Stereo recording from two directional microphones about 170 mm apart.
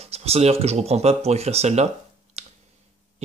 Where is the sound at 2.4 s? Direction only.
40° right (ahead or behind).